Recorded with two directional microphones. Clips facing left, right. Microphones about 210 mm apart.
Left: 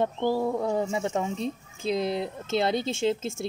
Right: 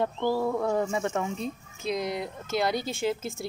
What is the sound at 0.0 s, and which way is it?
Speech, 20° left (ahead or behind).